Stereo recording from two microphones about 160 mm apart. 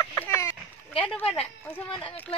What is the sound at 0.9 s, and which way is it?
Speech, 30° left (ahead or behind).